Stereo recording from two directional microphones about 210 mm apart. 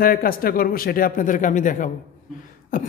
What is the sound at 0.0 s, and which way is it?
A man's voice, 45° left (ahead or behind).